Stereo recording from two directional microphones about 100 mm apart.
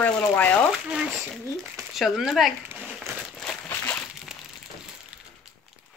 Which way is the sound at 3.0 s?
5° left (ahead or behind).